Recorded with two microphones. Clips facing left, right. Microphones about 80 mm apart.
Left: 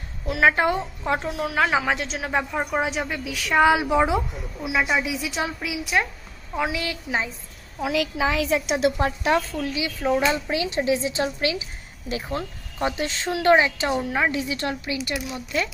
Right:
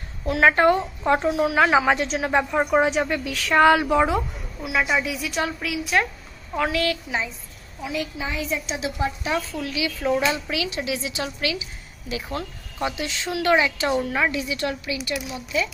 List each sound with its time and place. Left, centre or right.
0.3 s a woman's voice: centre; by 7.2 s left
7.8 s a woman's voice: left
9.6 s a woman's voice: left
13.8 s a woman's voice: centre
15.0 s a woman's voice: left